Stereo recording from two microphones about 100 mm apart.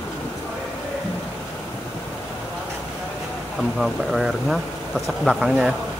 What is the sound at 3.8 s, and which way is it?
Speech, centre (ahead or behind).